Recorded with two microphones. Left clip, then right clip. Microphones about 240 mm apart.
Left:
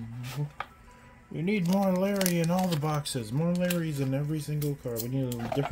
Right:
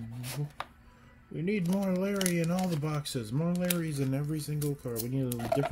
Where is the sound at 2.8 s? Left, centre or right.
Centre.